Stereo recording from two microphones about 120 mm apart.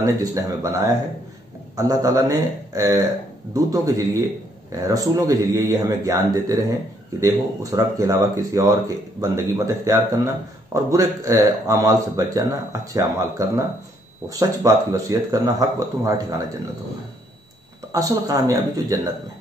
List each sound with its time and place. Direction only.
0.0 s speech: 25° right (ahead or behind)
17.9 s speech: 30° right (ahead or behind)